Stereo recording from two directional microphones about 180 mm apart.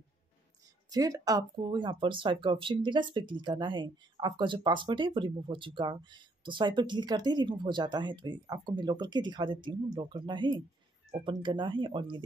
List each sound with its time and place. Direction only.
0.8 s speech: 20° right (ahead or behind)